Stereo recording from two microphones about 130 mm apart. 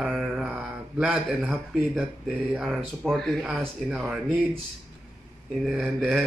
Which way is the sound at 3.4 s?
10° right (ahead or behind).